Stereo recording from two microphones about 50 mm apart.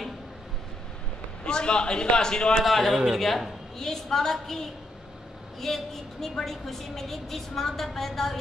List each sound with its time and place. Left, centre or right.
1.4 s a man's voice: centre
2.6 s a woman's voice: centre